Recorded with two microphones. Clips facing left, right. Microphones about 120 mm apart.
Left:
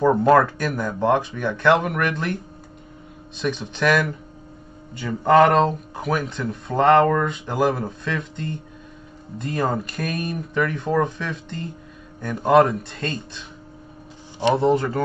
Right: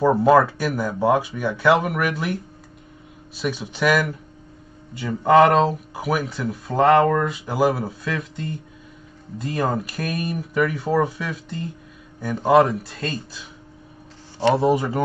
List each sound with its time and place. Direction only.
0.0 s speech: 5° right (ahead or behind)
3.3 s speech: 5° right (ahead or behind)
14.5 s speech: 10° right (ahead or behind)